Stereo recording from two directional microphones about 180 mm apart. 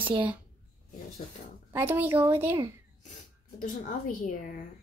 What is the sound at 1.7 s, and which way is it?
Speech, 10° right (ahead or behind).